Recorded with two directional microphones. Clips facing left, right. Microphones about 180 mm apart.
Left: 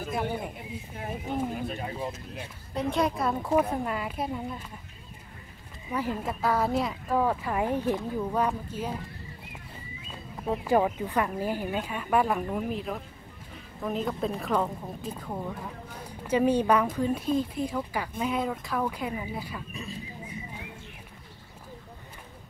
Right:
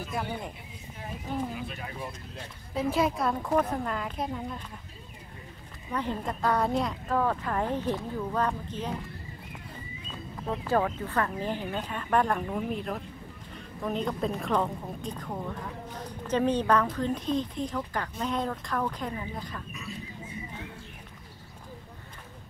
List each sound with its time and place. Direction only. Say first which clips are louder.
1.5 s speech: left 4 dB; 40° left (ahead or behind)
2.7 s a woman's voice: even; 5° right (ahead or behind)
5.9 s speech: left 1 dB; 5° left (ahead or behind)
10.4 s speech: left 3 dB; 10° left (ahead or behind)